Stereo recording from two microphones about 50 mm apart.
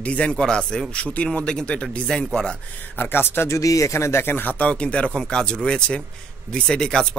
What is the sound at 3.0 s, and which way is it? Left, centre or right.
Speech, left.